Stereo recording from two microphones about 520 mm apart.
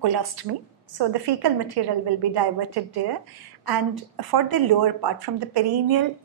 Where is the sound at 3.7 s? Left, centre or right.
Right.